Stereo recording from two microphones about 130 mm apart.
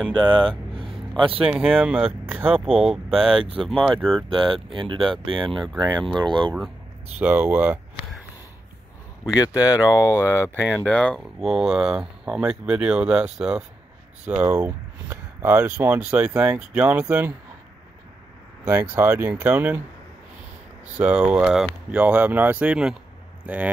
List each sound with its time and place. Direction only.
0.2 s speech: 35° right (ahead or behind)
0.7 s a sound: 40° right (ahead or behind)
1.5 s speech: centre (ahead or behind)
1.8 s speech: 10° right (ahead or behind)
2.8 s speech: 5° right (ahead or behind)
4.3 s speech: 40° right (ahead or behind)
7.2 s speech: 15° right (ahead or behind)
9.5 s speech: 10° right (ahead or behind)
9.8 s speech: 25° left (ahead or behind); by 17.3 s 15° right (ahead or behind)
18.7 s speech: 20° right (ahead or behind)
20.9 s speech: 10° right (ahead or behind)